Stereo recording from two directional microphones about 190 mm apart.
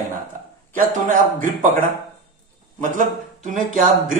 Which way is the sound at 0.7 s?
45° right (ahead or behind).